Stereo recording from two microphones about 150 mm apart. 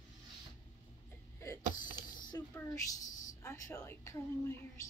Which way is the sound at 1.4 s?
20° left (ahead or behind).